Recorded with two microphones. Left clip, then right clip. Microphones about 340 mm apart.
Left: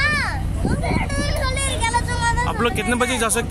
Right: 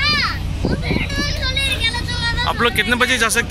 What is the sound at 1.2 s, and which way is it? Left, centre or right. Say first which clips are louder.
Vehicle: right 4 dB; left.